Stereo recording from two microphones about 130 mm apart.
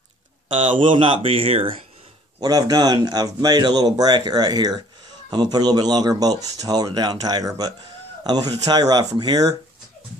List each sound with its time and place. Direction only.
0.7 s speech: 40° right (ahead or behind)
2.4 s speech: 30° right (ahead or behind)